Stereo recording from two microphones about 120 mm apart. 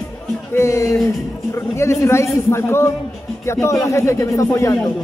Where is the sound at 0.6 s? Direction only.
25° left (ahead or behind).